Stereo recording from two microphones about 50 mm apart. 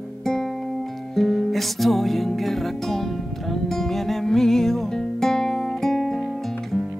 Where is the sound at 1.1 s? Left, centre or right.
Centre.